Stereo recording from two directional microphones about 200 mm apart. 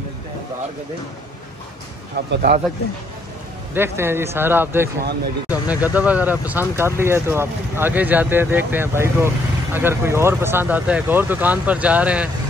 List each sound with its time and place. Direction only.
2.1 s speech: 50° right (ahead or behind)
3.7 s speech: 10° right (ahead or behind)